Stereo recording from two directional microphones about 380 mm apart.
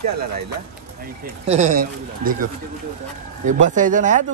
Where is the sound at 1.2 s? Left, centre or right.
Centre.